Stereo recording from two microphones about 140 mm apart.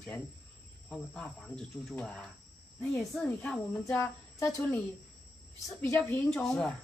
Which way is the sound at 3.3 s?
10° left (ahead or behind).